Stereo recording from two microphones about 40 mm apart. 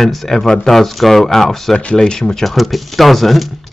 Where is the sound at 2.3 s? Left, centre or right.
Centre.